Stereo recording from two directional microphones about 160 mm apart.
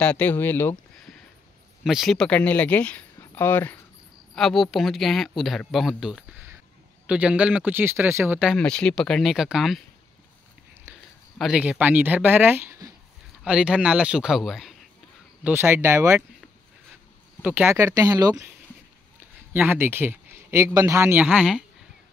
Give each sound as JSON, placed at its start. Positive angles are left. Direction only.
{"t": 0.0, "sound": "speech", "side_deg": 10}
{"t": 1.9, "sound": "speech", "side_deg": 0}
{"t": 4.4, "sound": "a man's voice", "side_deg": 0}
{"t": 8.5, "sound": "speech", "side_deg": 5}
{"t": 11.3, "sound": "a man's voice", "side_deg": -5}
{"t": 13.4, "sound": "speech", "side_deg": -5}
{"t": 15.4, "sound": "a man's voice", "side_deg": -15}
{"t": 17.4, "sound": "speech", "side_deg": -10}
{"t": 19.5, "sound": "a man's voice", "side_deg": -10}